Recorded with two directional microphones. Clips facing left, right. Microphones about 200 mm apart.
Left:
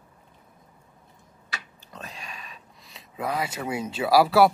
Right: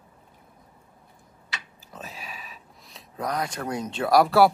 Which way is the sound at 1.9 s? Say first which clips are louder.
Right 1 dB; 5° right (ahead or behind).